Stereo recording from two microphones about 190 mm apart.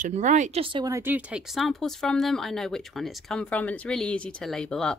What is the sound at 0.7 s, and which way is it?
Speech, 20° right (ahead or behind).